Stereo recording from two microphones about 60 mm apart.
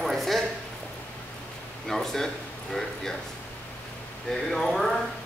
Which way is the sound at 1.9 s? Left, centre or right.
Centre.